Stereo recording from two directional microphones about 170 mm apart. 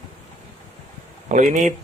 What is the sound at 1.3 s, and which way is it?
Speech, 45° right (ahead or behind).